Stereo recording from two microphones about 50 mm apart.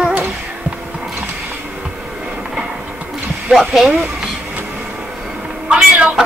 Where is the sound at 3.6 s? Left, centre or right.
Centre.